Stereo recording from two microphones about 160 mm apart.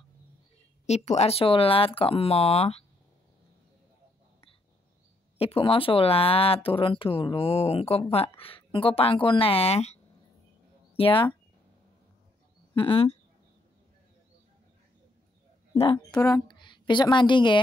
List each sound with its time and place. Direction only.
0.8 s speech: 45° left (ahead or behind)
5.4 s speech: 35° left (ahead or behind)
11.0 s speech: 30° left (ahead or behind)
12.7 s speech: 35° left (ahead or behind)
15.7 s a woman's voice: 35° left (ahead or behind)